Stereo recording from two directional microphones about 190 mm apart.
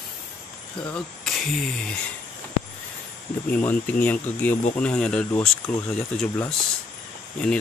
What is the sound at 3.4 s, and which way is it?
Speech, 10° left (ahead or behind).